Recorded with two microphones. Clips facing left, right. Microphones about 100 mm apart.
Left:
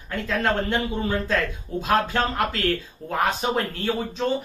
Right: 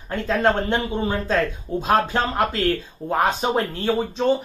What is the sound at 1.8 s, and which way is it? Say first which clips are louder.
Speech: right 2 dB; 25° right (ahead or behind).